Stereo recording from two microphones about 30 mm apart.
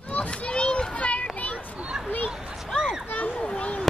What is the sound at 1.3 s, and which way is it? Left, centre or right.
Children playing, left.